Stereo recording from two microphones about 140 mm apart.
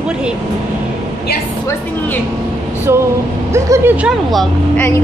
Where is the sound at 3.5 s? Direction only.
15° right (ahead or behind).